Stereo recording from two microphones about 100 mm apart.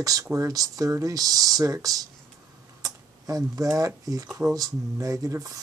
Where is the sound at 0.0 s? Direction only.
35° right (ahead or behind).